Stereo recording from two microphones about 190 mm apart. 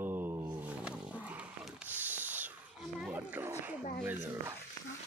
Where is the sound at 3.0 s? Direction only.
5° right (ahead or behind).